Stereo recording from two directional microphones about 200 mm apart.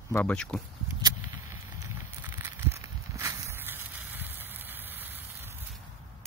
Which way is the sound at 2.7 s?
15° right (ahead or behind).